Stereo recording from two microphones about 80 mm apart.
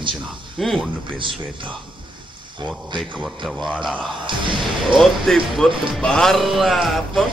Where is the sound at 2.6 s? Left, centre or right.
Right.